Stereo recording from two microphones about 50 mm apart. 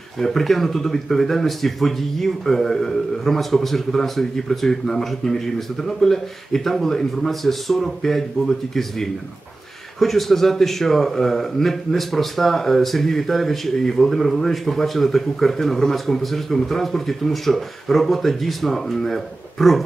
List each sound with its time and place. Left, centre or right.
0.2 s a man's voice: centre